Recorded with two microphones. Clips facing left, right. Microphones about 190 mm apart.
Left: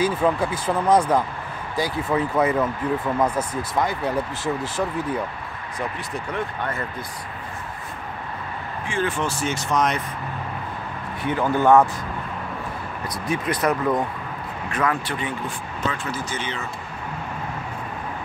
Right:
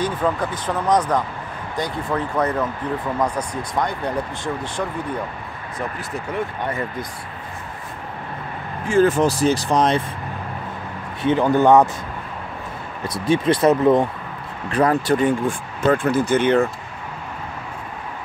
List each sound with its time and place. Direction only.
0.0 s speech: 10° left (ahead or behind)
6.6 s speech: 15° right (ahead or behind)
8.8 s speech: 40° right (ahead or behind)
11.2 s speech: 20° right (ahead or behind)
13.0 s speech: 30° right (ahead or behind)
14.7 s speech: 35° right (ahead or behind); by 16.6 s 55° right (ahead or behind)